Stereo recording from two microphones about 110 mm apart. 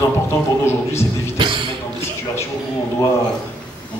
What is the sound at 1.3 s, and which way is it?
Music, 50° right (ahead or behind).